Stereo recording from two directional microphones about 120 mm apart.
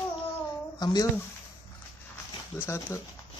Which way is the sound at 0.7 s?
35° left (ahead or behind).